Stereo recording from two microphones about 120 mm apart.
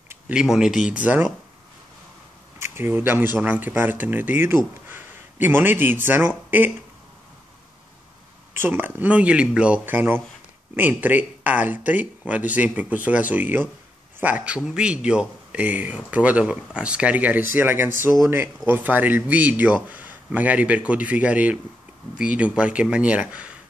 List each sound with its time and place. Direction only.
0.3 s speech: 5° right (ahead or behind)
2.6 s speech: 20° right (ahead or behind)
8.5 s speech: 15° right (ahead or behind)